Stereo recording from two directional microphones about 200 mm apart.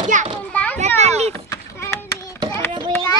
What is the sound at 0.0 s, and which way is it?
Children playing, 40° right (ahead or behind).